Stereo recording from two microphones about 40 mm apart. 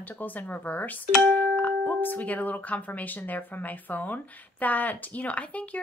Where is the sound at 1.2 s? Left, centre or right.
Left.